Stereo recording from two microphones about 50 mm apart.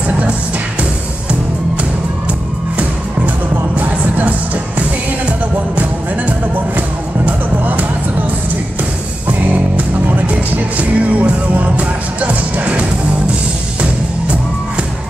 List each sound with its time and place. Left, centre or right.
3.3 s music: right
5.8 s music: right
9.3 s music: right